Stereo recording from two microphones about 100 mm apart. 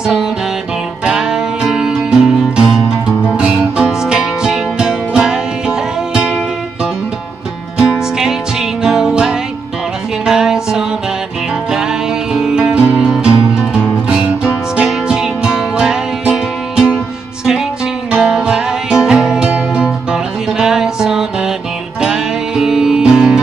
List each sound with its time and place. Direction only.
0.0 s music: 5° right (ahead or behind)
18.1 s music: 10° right (ahead or behind)